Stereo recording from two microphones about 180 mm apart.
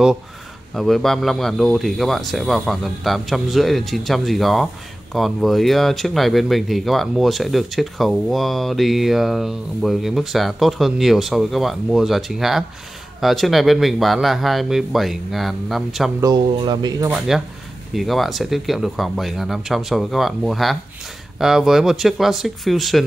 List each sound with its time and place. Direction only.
0.7 s speech: centre (ahead or behind)
16.2 s speech: 25° right (ahead or behind)
17.3 s speech: centre (ahead or behind)